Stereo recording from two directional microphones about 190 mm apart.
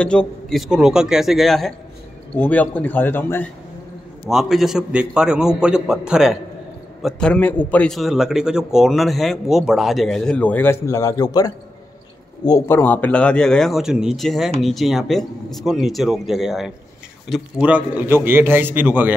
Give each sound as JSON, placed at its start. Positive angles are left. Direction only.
{"t": 0.0, "sound": "a man's voice", "side_deg": 5}
{"t": 4.3, "sound": "a man's voice", "side_deg": 0}